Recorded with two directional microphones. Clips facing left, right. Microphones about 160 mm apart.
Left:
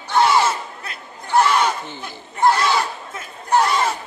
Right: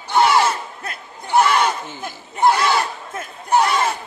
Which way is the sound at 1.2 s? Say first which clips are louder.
Right 1 dB; 10° right (ahead or behind).